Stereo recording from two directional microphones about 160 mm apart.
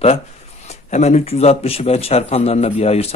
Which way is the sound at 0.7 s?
45° left (ahead or behind).